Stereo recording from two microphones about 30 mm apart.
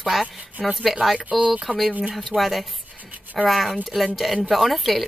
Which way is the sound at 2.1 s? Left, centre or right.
Centre.